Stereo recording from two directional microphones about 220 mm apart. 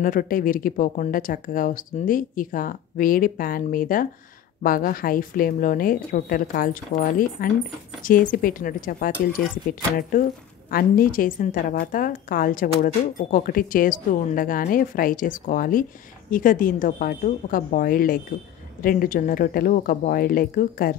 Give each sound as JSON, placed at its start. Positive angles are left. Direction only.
{"t": 0.0, "sound": "a woman's voice", "side_deg": 40}
{"t": 10.7, "sound": "a woman's voice", "side_deg": 40}